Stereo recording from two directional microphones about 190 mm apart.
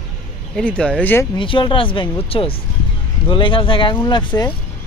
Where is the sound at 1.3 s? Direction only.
25° left (ahead or behind).